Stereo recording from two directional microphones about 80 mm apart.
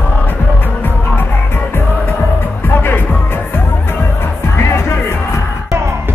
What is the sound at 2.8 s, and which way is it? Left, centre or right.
Music, left.